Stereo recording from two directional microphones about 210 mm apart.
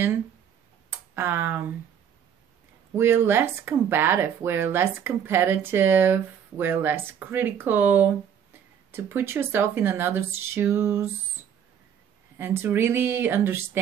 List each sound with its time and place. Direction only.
0.8 s a sound: 10° right (ahead or behind)
3.0 s speech: 10° right (ahead or behind)
12.4 s speech: 10° right (ahead or behind)